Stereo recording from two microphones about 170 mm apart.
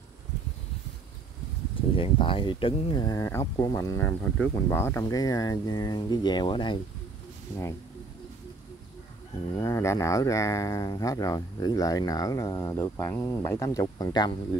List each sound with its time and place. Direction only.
1.8 s speech: 30° left (ahead or behind)
9.6 s speech: 20° left (ahead or behind)